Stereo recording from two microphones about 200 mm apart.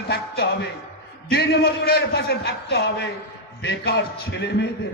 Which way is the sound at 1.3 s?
50° left (ahead or behind).